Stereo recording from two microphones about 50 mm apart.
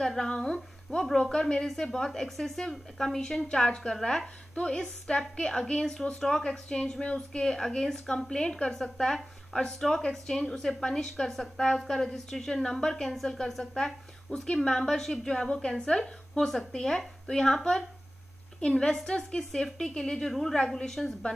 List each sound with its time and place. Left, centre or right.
0.0 s a woman's voice: centre